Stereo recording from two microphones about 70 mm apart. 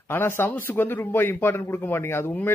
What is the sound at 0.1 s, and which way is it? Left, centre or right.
Speech, left.